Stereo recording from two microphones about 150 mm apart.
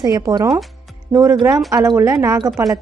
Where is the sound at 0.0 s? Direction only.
25° right (ahead or behind).